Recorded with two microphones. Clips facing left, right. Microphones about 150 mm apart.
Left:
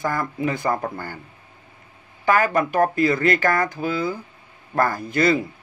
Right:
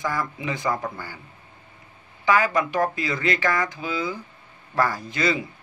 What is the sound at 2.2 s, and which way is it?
Speech, 55° left (ahead or behind).